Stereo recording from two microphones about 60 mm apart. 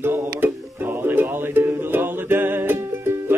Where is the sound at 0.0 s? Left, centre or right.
Right.